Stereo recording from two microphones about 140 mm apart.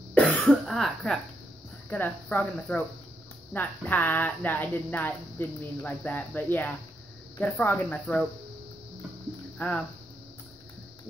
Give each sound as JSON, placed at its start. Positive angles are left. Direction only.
{"t": 0.1, "sound": "cough", "side_deg": 10}
{"t": 0.5, "sound": "speech", "side_deg": 0}
{"t": 9.6, "sound": "speech", "side_deg": 10}